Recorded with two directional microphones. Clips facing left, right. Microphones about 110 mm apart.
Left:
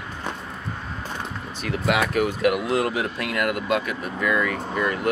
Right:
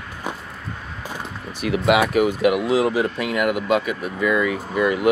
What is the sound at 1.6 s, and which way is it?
Speech, 5° right (ahead or behind).